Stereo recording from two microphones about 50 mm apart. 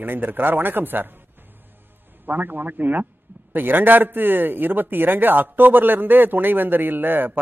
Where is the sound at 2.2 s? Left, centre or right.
Right.